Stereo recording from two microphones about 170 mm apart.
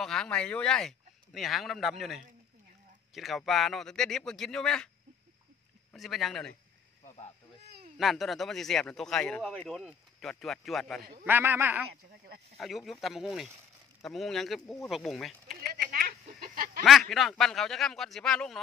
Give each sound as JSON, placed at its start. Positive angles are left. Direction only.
{"t": 0.0, "sound": "speech", "side_deg": 5}
{"t": 5.9, "sound": "speech", "side_deg": 0}
{"t": 7.6, "sound": "a sound", "side_deg": -65}
{"t": 8.0, "sound": "speech", "side_deg": 0}
{"t": 11.0, "sound": "a man's voice", "side_deg": -60}
{"t": 11.2, "sound": "a man's voice", "side_deg": -10}
{"t": 12.5, "sound": "speech", "side_deg": 0}
{"t": 15.9, "sound": "a sound", "side_deg": -60}
{"t": 16.8, "sound": "speech", "side_deg": 0}